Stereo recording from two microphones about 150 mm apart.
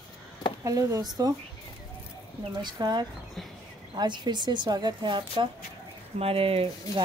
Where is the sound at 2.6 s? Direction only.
30° right (ahead or behind).